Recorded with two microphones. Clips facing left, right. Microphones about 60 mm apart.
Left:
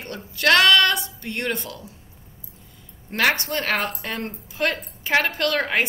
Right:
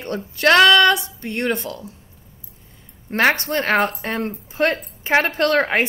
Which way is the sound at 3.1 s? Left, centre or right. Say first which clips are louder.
Right 4 dB; right.